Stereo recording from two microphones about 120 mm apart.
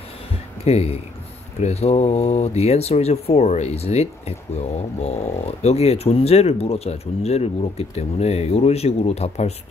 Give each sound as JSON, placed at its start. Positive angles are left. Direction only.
{"t": 0.7, "sound": "speech", "side_deg": 60}